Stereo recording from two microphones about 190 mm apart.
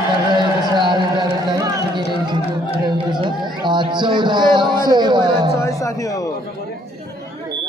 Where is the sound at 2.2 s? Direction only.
25° right (ahead or behind).